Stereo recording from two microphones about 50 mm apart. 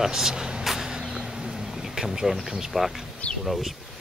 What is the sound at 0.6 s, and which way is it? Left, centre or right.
Insect, centre.